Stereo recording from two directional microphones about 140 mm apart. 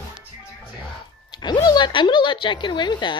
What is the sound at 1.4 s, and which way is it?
Speech, 30° left (ahead or behind).